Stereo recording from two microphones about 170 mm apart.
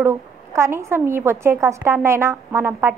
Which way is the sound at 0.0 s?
15° right (ahead or behind).